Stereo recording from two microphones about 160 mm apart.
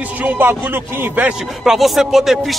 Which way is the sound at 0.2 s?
10° right (ahead or behind).